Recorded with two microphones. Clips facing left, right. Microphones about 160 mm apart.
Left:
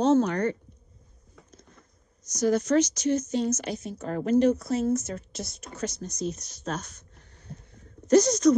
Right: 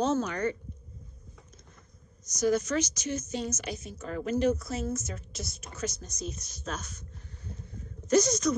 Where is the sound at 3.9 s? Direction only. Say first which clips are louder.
Left 4 dB; 50° left (ahead or behind).